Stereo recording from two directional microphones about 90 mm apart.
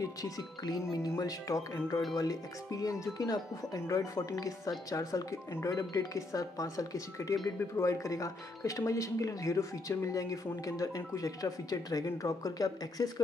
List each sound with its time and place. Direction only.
0.0 s speech: 40° left (ahead or behind)